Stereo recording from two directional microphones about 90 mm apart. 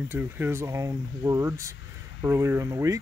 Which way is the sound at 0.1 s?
25° right (ahead or behind).